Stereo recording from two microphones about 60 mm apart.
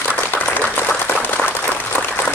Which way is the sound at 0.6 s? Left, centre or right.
Left.